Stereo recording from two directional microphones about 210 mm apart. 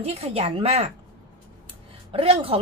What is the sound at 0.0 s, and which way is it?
Speech, 30° right (ahead or behind).